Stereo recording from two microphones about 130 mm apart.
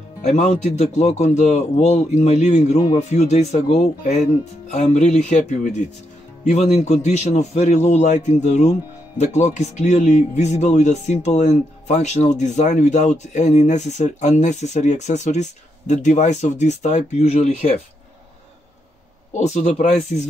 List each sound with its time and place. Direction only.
0.2 s speech: 65° left (ahead or behind)
19.3 s speech: 60° left (ahead or behind)